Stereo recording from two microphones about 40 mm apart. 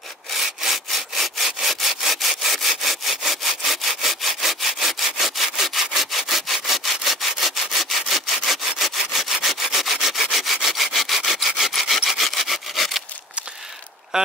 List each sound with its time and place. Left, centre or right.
0.3 s sawing: centre
9.3 s rub: centre
11.5 s wood: centre
12.0 s sawing: centre
14.1 s a sound: centre